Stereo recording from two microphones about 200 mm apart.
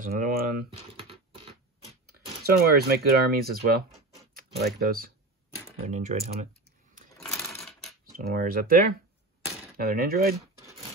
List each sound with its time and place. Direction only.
0.0 s speech: 45° right (ahead or behind)
0.9 s typing: 30° right (ahead or behind)
2.0 s speech: 50° right (ahead or behind)
5.9 s speech: 35° right (ahead or behind)
7.2 s sewing machine: centre (ahead or behind)
7.5 s coin: centre (ahead or behind)
8.0 s speech: 45° right (ahead or behind)